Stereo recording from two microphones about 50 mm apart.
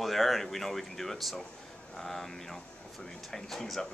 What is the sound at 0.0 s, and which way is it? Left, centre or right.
Speech, centre.